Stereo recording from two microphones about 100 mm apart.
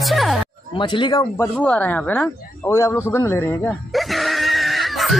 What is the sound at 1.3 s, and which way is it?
Speech, 15° left (ahead or behind).